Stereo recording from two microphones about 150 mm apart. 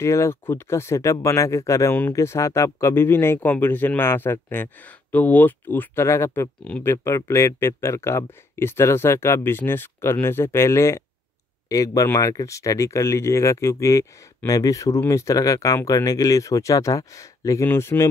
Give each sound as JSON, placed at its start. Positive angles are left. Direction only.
{"t": 0.0, "sound": "speech", "side_deg": 20}